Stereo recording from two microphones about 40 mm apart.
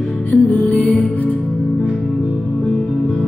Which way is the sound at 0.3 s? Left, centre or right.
Left.